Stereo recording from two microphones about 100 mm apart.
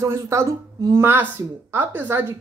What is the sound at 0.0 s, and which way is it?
Speech, 30° right (ahead or behind).